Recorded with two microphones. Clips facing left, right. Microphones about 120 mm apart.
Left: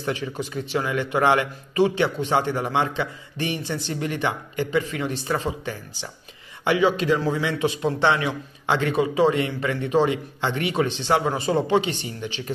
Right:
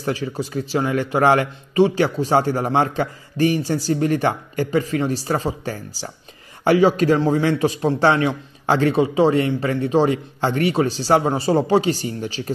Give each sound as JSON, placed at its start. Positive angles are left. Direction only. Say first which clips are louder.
{"t": 0.0, "sound": "a man's voice", "louder": "right 3 dB", "side_deg": -35}